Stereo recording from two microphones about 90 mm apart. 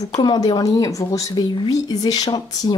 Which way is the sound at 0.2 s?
55° left (ahead or behind).